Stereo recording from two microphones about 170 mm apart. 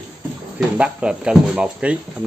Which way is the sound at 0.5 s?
5° right (ahead or behind).